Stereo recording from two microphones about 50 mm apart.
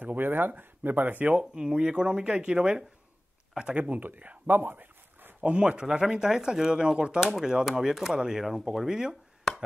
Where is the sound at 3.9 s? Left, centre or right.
Right.